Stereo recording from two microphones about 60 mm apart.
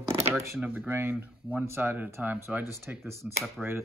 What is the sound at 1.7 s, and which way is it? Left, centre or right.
Speech, right.